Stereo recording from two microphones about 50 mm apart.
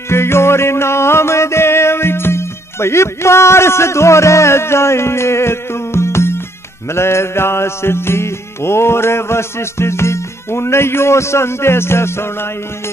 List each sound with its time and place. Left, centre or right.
0.1 s music: left